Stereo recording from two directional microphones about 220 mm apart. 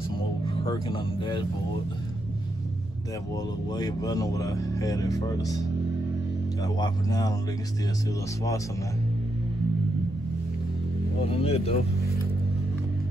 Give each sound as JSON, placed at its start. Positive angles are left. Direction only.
{"t": 0.7, "sound": "speech", "side_deg": 25}
{"t": 3.7, "sound": "speech", "side_deg": 15}
{"t": 6.6, "sound": "speech", "side_deg": 15}
{"t": 11.2, "sound": "speech", "side_deg": 25}